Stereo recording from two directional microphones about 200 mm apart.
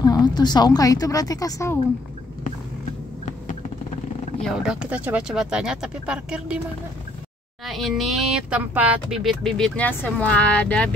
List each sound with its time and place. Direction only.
0.0 s a woman's voice: 20° left (ahead or behind)
4.4 s speech: 5° right (ahead or behind)
7.6 s speech: centre (ahead or behind)